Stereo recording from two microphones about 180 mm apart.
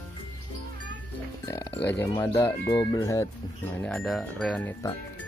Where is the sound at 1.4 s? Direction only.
20° left (ahead or behind).